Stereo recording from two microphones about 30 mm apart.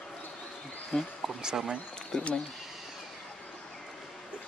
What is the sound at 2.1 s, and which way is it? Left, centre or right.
Speech, left.